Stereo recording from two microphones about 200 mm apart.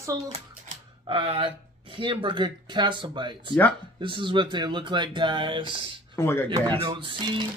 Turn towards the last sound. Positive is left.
turn(degrees=-25)  # may be behind; listen again after turning